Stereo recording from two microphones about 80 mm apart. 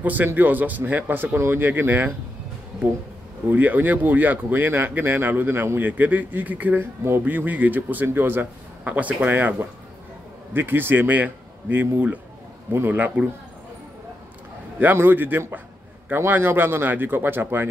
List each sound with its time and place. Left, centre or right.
0.0 s speech: right
3.4 s speech: right
14.8 s speech: right